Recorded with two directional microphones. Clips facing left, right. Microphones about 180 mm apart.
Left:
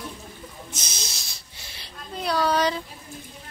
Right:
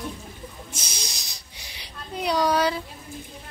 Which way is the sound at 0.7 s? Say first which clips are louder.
Even; 10° right (ahead or behind).